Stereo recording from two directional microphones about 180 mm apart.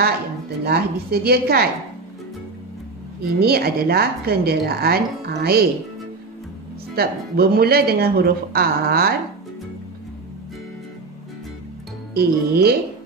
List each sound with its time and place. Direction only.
0.7 s a woman's voice: 60° right (ahead or behind)
3.3 s a woman's voice: 60° right (ahead or behind)
7.0 s a woman's voice: 60° right (ahead or behind)
12.1 s a woman's voice: 60° right (ahead or behind)